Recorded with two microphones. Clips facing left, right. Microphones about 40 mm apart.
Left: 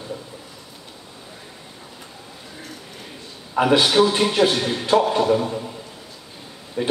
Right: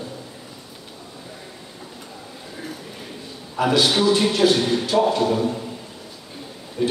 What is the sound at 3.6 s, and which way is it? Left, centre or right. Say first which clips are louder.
A man's voice: left 3 dB; left.